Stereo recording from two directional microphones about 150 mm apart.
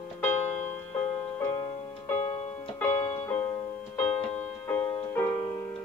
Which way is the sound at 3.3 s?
15° left (ahead or behind).